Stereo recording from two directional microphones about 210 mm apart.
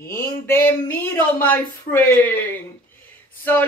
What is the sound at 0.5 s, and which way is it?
Speech, 10° left (ahead or behind).